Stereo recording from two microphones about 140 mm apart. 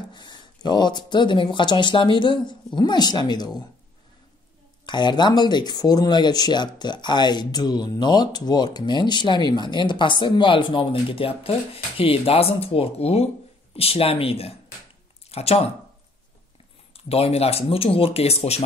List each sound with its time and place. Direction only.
0.1 s speech: 30° left (ahead or behind)
4.8 s speech: 30° left (ahead or behind)
16.9 s speech: 45° left (ahead or behind)